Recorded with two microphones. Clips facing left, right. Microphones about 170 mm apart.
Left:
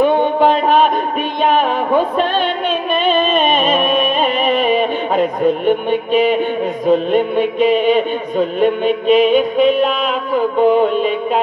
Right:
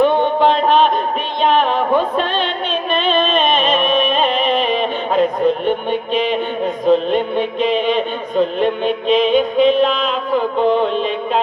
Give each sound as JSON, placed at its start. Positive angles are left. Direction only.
{"t": 0.0, "sound": "music", "side_deg": 5}